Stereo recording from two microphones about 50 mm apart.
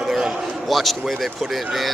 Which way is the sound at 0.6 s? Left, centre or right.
Centre.